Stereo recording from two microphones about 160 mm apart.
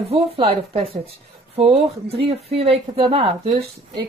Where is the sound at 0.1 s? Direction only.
35° right (ahead or behind).